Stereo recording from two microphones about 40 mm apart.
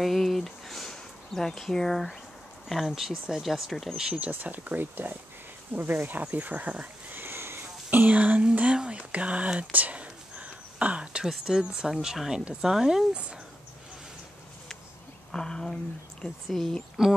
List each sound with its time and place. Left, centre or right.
0.0 s a sound: centre
2.7 s speech: centre
4.1 s speech: right
7.1 s sniff: right
7.6 s speech: right
9.7 s whispering: right
11.4 s speech: centre
13.1 s speech: right
15.3 s speech: centre
16.4 s speech: centre